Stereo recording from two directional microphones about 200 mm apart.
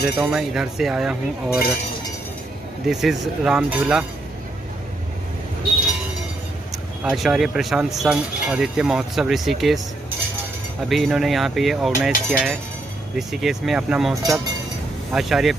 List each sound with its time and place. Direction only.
0.2 s speech: 5° right (ahead or behind)
2.9 s speech: centre (ahead or behind)
7.0 s speech: 5° right (ahead or behind)
10.9 s speech: centre (ahead or behind)
14.2 s speech: 15° right (ahead or behind)
15.1 s speech: centre (ahead or behind)